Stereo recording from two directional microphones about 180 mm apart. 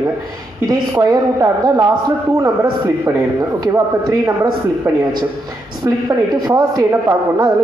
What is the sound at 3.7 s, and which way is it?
Speech, 15° right (ahead or behind).